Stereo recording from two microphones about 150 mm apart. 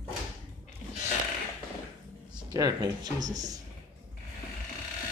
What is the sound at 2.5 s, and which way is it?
Speech, 25° right (ahead or behind).